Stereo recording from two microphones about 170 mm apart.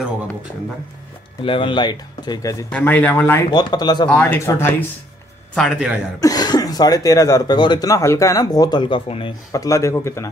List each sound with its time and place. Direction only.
1.4 s speech: 30° left (ahead or behind)
2.7 s speech: 10° left (ahead or behind)
3.4 s speech: 25° left (ahead or behind)
4.1 s speech: 15° left (ahead or behind)
5.5 s a man's voice: centre (ahead or behind)
6.2 s speech: 25° left (ahead or behind)